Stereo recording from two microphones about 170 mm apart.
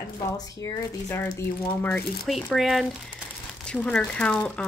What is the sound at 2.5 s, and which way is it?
Speech, centre (ahead or behind).